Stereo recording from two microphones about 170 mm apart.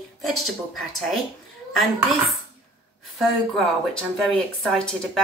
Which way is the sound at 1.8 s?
Centre (ahead or behind).